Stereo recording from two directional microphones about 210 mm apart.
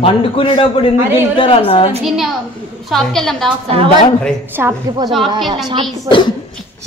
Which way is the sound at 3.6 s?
25° right (ahead or behind).